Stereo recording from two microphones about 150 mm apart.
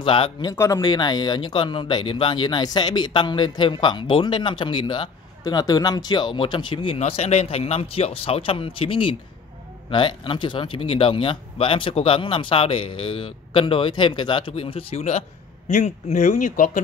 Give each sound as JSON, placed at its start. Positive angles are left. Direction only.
{"t": 0.0, "sound": "speech", "side_deg": 35}